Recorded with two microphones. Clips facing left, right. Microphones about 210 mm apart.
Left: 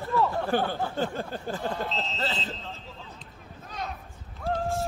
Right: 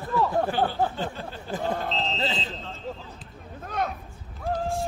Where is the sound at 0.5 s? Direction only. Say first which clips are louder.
Right 1 dB; 50° left (ahead or behind).